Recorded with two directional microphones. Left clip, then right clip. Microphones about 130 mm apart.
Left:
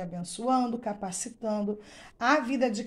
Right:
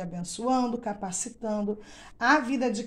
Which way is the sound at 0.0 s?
10° left (ahead or behind).